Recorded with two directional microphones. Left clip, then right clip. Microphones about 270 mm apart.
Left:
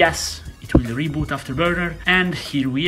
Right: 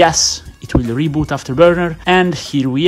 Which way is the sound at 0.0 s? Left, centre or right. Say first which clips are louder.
Right 6 dB; right.